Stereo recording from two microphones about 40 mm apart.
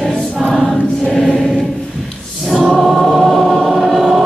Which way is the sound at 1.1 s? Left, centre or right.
Centre.